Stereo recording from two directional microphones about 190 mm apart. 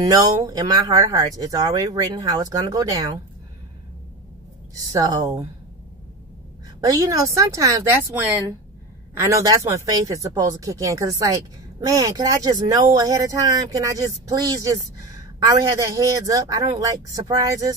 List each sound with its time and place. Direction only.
0.0 s speech: 20° right (ahead or behind)
4.7 s speech: 20° right (ahead or behind)
6.8 s speech: 20° right (ahead or behind)